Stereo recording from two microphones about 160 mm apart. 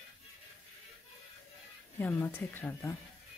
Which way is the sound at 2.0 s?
10° left (ahead or behind).